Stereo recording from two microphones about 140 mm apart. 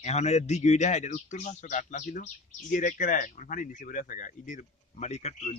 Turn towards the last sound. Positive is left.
turn(degrees=50)  # may be behind; listen again after turning